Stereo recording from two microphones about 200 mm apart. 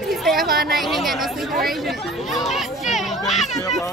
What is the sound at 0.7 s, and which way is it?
Speech, centre (ahead or behind).